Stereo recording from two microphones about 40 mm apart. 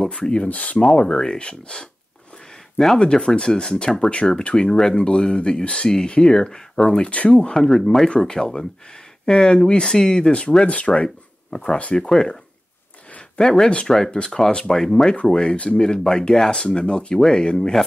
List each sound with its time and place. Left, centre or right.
0.1 s speech: left
0.9 s speech: left
3.0 s speech: left
7.1 s speech: left
7.5 s speech: centre
8.2 s speech: centre
10.6 s speech: left
11.5 s speech: left
13.4 s speech: centre
15.2 s speech: left